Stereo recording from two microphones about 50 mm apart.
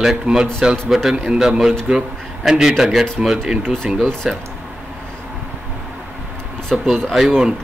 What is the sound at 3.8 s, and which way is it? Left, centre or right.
Speech, centre.